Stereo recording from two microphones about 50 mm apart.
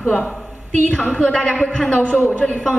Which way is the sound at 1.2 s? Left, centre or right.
Centre.